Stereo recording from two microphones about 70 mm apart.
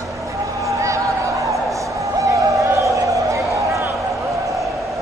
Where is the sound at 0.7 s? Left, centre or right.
Right.